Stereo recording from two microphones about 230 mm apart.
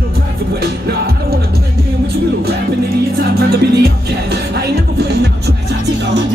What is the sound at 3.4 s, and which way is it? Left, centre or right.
Music, right.